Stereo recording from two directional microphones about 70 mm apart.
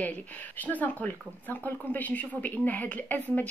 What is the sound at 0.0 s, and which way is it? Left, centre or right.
Speech, left.